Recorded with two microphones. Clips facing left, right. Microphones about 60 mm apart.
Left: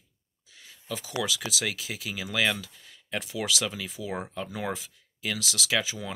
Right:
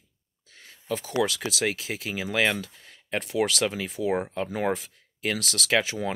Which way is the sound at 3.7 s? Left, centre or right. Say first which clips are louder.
Right 7 dB; right.